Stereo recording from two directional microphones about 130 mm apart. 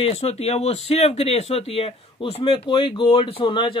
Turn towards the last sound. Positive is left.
turn(degrees=40)  # may be behind; listen again after turning